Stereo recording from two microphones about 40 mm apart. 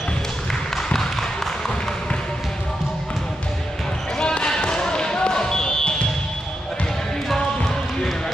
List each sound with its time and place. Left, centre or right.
4.2 s basketball bounce: left
7.3 s basketball bounce: centre